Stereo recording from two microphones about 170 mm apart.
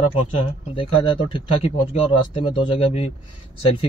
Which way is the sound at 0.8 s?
30° left (ahead or behind).